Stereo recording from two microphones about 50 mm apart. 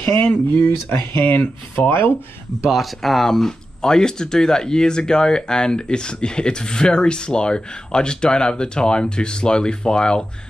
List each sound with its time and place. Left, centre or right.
0.3 s speech: left
0.7 s speech: left
1.2 s speech: left
1.9 s speech: left
2.7 s speech: centre